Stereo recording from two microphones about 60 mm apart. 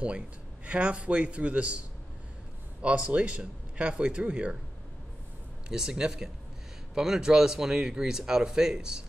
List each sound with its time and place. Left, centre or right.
0.7 s speech: centre
2.8 s speech: centre
5.7 s speech: centre